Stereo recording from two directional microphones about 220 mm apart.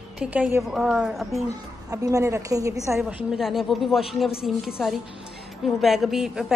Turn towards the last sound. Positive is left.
turn(degrees=0)  # may be behind; listen again after turning